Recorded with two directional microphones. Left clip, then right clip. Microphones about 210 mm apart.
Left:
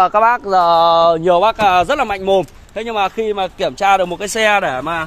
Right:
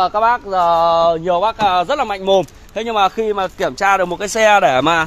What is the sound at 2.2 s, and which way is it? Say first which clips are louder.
Speech: right 3 dB; 5° left (ahead or behind).